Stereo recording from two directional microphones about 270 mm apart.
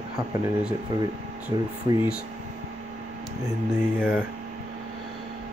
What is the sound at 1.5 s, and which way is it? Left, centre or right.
Speech, centre.